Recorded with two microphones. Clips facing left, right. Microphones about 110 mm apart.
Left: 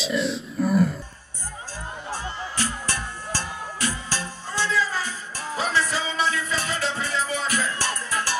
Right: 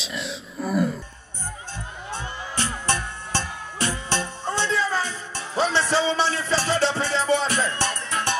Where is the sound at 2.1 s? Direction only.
25° right (ahead or behind).